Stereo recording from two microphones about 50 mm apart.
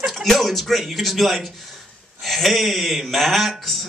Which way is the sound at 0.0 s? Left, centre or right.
Centre.